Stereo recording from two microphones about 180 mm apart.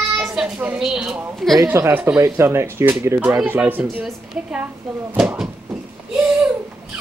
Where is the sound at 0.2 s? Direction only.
5° right (ahead or behind).